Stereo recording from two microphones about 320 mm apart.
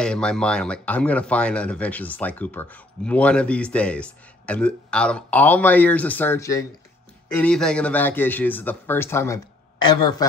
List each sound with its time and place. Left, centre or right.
0.0 s a man's voice: centre